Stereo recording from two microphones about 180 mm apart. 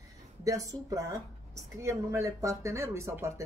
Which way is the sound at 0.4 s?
20° right (ahead or behind).